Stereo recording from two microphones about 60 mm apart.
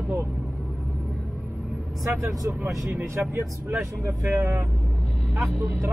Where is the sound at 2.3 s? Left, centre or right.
Right.